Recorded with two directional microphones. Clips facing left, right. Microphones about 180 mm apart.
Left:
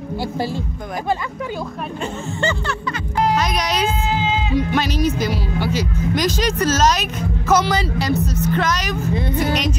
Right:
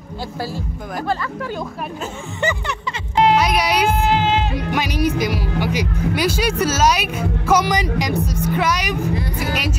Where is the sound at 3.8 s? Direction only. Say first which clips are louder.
Right 3 dB; 65° right (ahead or behind).